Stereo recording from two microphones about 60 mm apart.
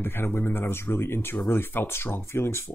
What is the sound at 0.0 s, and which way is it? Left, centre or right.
Speech, left.